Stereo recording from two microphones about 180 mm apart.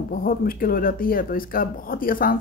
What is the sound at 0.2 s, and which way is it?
Speech, 50° left (ahead or behind).